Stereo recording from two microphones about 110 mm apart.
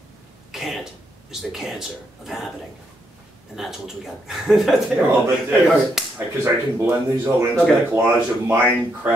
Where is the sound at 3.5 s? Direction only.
5° right (ahead or behind).